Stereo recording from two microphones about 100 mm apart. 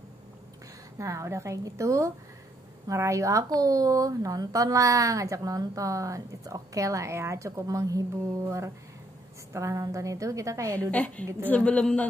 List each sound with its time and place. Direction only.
0.9 s a woman's voice: 30° right (ahead or behind)
10.9 s a man's voice: 15° left (ahead or behind)